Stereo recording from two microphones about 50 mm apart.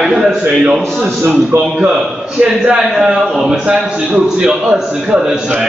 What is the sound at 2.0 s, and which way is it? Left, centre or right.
A man's voice, centre.